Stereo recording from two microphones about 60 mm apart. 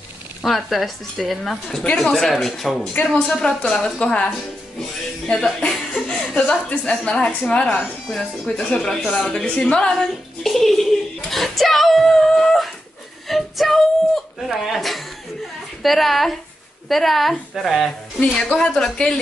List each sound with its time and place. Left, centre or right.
0.4 s speech: centre
1.8 s speech: centre
2.9 s speech: left
3.3 s a woman's voice: centre
10.4 s speech: centre
11.2 s a sound: centre
15.8 s speech: centre
18.5 s a woman's voice: centre